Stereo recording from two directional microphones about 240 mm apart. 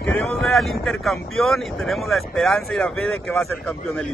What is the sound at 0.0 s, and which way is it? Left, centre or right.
A man's voice, centre.